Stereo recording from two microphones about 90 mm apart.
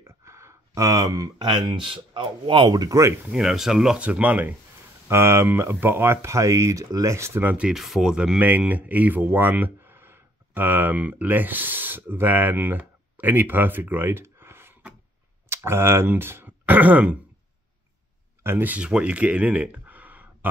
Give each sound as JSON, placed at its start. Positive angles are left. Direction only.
{"t": 0.0, "sound": "a sound", "side_deg": -30}
{"t": 1.4, "sound": "speech", "side_deg": -55}
{"t": 3.3, "sound": "speech", "side_deg": -5}
{"t": 5.0, "sound": "speech", "side_deg": -30}
{"t": 7.5, "sound": "speech", "side_deg": -5}
{"t": 18.4, "sound": "speech", "side_deg": -20}